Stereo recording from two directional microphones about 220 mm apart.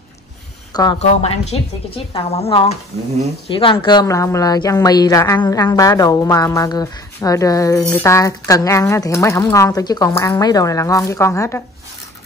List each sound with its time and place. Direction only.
0.9 s a woman's voice: 30° left (ahead or behind); by 11.6 s 10° left (ahead or behind)